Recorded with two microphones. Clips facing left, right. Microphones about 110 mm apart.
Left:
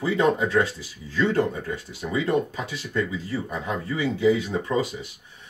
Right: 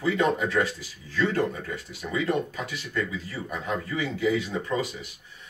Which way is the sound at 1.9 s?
25° left (ahead or behind).